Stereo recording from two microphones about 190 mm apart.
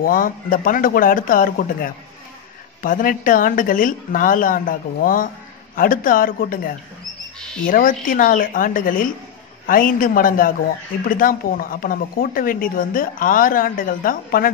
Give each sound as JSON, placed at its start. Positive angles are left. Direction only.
{"t": 0.0, "sound": "speech", "side_deg": 45}